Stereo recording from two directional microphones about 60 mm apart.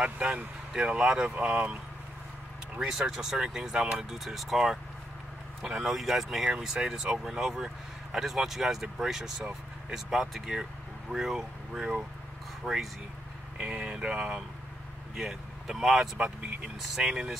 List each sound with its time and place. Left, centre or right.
0.0 s speech: centre
1.3 s speech: right
2.9 s speech: centre
4.2 s speech: centre
12.6 s speech: centre
13.6 s speech: centre